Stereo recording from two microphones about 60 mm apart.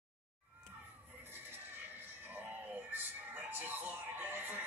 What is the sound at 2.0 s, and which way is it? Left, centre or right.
Music, right.